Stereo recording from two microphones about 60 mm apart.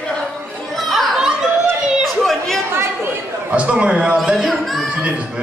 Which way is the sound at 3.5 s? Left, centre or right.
Right.